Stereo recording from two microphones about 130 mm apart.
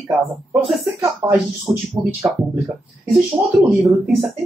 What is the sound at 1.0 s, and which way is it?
Speech, 20° right (ahead or behind).